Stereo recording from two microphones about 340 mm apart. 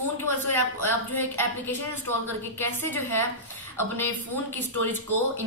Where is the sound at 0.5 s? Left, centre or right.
Centre.